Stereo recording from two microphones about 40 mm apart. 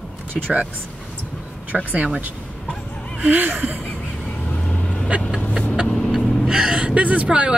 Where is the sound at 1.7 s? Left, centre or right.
Centre.